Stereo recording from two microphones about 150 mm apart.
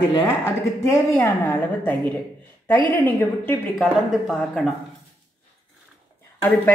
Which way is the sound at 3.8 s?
Centre (ahead or behind).